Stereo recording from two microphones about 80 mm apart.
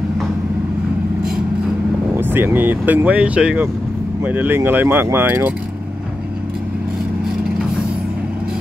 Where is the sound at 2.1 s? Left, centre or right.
Right.